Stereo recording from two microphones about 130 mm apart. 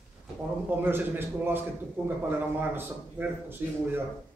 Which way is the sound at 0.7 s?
15° right (ahead or behind).